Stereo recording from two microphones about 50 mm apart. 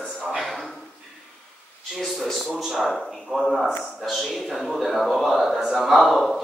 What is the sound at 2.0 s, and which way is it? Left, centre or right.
A man's voice, centre.